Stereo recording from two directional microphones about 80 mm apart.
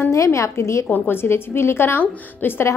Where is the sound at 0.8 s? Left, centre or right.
Left.